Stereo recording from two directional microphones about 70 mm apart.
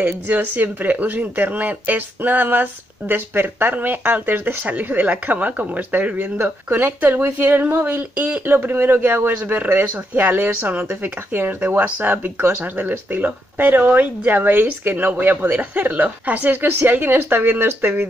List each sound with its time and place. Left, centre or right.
0.0 s speech: right